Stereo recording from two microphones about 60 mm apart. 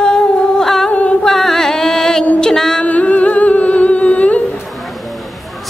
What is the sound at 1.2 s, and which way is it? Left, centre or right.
Music, centre.